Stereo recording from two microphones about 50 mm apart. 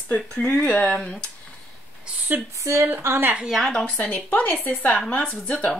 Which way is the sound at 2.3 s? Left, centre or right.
Right.